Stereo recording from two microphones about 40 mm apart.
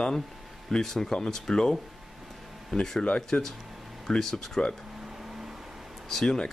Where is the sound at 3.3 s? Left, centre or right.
Left.